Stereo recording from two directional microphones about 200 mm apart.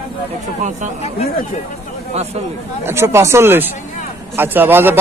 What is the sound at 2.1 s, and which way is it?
Speech, 30° right (ahead or behind).